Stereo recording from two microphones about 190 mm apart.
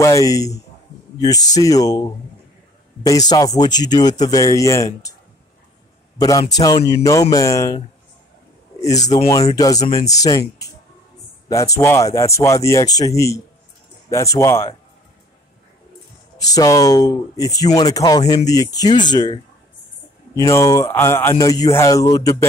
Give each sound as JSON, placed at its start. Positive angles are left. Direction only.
{"t": 0.0, "sound": "a man's voice", "side_deg": 15}
{"t": 6.1, "sound": "a man's voice", "side_deg": 20}
{"t": 8.8, "sound": "a man's voice", "side_deg": 20}
{"t": 16.5, "sound": "a man's voice", "side_deg": 20}